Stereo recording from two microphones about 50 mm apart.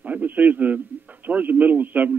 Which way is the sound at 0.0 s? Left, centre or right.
Right.